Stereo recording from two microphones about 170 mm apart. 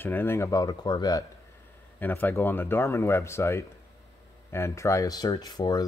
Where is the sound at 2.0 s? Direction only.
10° left (ahead or behind).